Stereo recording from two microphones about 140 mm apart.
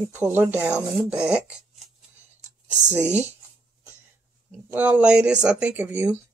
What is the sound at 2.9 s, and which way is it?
Speech, 10° right (ahead or behind).